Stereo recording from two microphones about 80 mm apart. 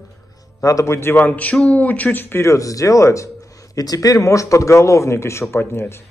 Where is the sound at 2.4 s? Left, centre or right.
Left.